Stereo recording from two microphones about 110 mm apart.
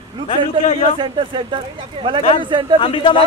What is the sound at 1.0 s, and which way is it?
Speech, 45° right (ahead or behind).